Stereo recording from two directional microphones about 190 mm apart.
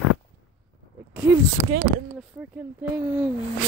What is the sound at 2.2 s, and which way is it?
Speech, 5° right (ahead or behind).